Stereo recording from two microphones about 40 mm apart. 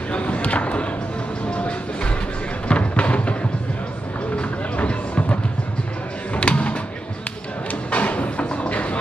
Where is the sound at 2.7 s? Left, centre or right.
Left.